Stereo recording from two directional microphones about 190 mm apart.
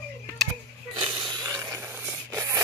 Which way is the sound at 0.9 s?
25° right (ahead or behind).